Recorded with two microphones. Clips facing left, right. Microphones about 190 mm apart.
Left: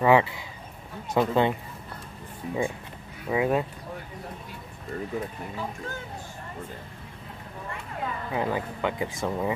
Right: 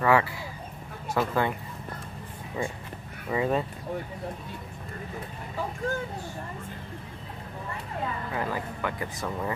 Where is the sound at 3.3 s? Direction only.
5° left (ahead or behind).